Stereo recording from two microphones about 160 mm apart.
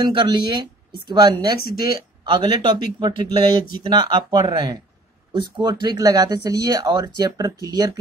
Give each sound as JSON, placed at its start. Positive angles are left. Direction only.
{"t": 0.0, "sound": "speech", "side_deg": -30}